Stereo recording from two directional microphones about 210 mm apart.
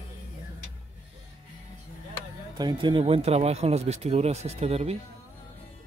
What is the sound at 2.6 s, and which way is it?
Speech, 20° right (ahead or behind).